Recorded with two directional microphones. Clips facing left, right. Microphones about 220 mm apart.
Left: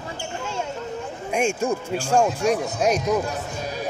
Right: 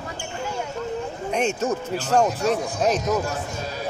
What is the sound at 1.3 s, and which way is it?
Speech, 10° left (ahead or behind).